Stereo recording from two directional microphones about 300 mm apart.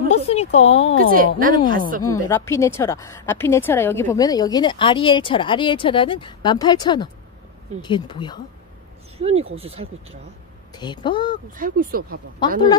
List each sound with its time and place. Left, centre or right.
0.1 s a sound: left
0.6 s speech: centre
1.1 s speech: right
2.0 s speech: centre
9.2 s speech: centre
10.8 s speech: centre
11.5 s speech: right
12.4 s speech: centre